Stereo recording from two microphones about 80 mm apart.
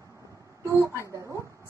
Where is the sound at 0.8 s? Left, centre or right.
Right.